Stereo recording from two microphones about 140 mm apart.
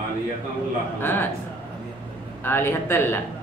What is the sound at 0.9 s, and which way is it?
Speech, 15° left (ahead or behind).